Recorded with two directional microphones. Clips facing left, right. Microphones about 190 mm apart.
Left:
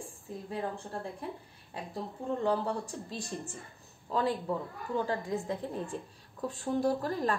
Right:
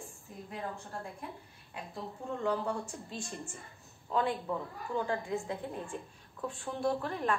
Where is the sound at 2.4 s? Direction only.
35° left (ahead or behind).